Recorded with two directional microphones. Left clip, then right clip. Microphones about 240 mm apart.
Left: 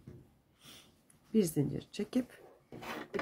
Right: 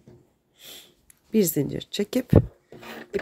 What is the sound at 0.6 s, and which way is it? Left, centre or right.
Sniff, right.